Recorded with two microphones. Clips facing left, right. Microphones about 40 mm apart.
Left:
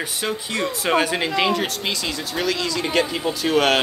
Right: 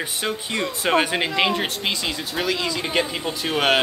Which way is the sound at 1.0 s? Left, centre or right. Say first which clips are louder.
Even; centre.